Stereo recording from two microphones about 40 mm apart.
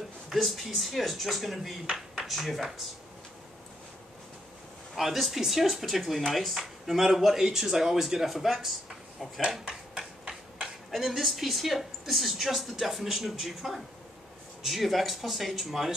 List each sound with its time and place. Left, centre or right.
0.3 s a woman's voice: centre
4.9 s a woman's voice: centre
9.7 s a sound: right
10.9 s a woman's voice: centre